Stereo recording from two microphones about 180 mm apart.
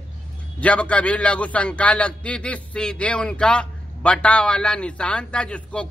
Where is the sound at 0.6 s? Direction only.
5° left (ahead or behind).